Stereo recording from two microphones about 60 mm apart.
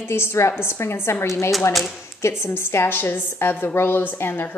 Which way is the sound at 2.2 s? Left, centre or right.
Left.